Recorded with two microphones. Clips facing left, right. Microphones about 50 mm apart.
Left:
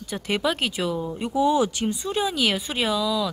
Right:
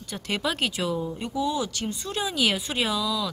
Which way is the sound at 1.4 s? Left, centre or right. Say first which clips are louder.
Left 8 dB; left.